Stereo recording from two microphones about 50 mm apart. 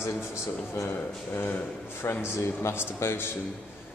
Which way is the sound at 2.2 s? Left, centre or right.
Left.